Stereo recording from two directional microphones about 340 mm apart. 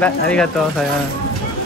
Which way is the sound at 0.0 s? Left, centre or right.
Centre.